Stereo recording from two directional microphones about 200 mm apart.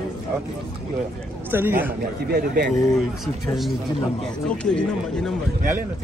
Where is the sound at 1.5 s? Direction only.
10° right (ahead or behind).